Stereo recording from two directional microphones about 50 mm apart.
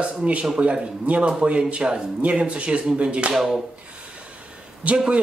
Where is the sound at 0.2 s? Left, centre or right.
Right.